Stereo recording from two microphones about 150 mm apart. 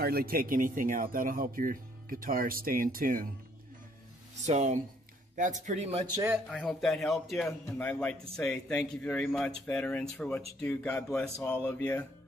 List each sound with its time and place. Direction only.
0.0 s speech: 85° right; by 3.3 s 70° right (ahead or behind)
4.4 s speech: 50° right (ahead or behind)
6.1 s speech: 15° right (ahead or behind)
6.6 s a man's voice: centre (ahead or behind)